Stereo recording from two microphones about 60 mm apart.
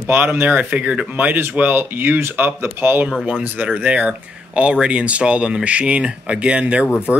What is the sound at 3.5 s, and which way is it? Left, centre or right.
Speech, right.